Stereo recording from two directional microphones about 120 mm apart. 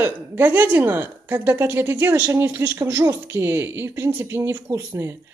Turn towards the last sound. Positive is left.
turn(degrees=-25)  # may be behind; listen again after turning